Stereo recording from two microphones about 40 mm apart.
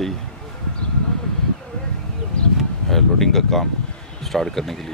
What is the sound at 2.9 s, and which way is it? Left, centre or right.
Speech, centre.